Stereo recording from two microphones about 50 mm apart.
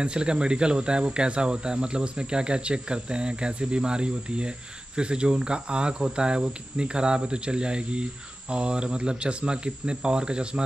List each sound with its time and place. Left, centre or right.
0.0 s speech: centre